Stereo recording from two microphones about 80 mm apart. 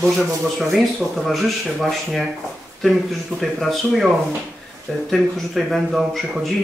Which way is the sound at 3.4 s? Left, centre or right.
Centre.